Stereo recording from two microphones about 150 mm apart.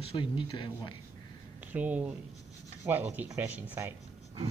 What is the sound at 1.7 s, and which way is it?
Speech, 10° right (ahead or behind).